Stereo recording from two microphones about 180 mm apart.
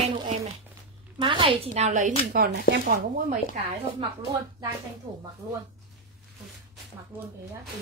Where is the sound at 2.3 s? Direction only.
50° right (ahead or behind).